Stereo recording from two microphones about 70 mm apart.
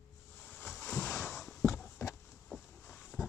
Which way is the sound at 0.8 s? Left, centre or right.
Centre.